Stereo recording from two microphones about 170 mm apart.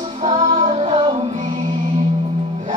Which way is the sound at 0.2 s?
45° right (ahead or behind).